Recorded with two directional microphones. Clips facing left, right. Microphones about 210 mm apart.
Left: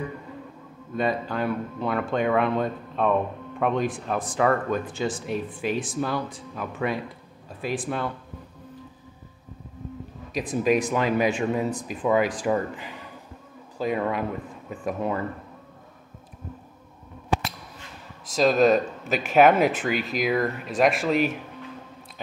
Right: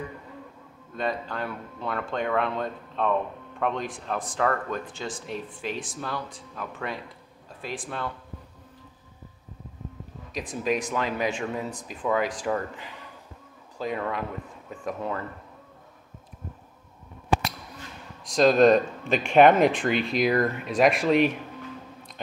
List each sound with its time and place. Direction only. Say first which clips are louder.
0.9 s speech: left 4 dB; 10° left (ahead or behind)
10.3 s speech: left 5 dB; 5° left (ahead or behind)
13.7 s speech: left 4 dB; 10° left (ahead or behind)
18.3 s speech: right 1 dB; 5° left (ahead or behind)